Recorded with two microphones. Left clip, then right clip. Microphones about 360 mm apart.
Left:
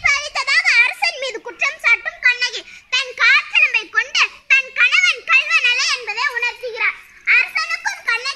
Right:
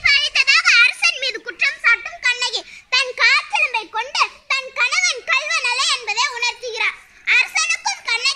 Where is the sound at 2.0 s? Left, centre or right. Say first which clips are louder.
Left 3 dB; centre.